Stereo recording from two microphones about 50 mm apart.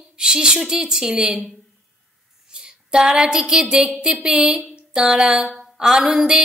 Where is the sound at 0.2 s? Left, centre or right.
Centre.